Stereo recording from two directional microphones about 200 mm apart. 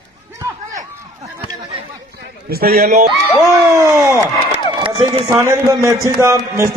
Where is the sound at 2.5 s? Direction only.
50° right (ahead or behind).